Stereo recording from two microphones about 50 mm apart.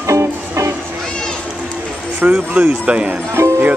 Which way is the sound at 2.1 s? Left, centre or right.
Right.